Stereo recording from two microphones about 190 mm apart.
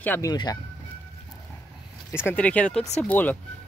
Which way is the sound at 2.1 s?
10° left (ahead or behind).